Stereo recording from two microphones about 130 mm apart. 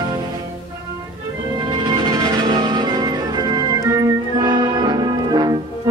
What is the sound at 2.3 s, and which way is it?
Organ, 35° right (ahead or behind).